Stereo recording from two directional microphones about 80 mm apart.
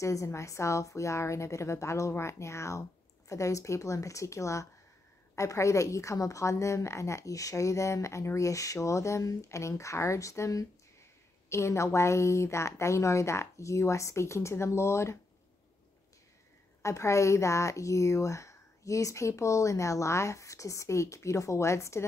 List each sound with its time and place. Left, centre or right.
0.0 s a woman's voice: left
16.8 s a woman's voice: left